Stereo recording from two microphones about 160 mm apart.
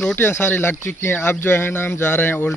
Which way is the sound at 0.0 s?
15° left (ahead or behind).